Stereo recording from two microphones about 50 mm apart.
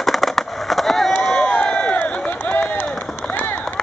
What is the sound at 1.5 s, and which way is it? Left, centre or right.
Crowd, left.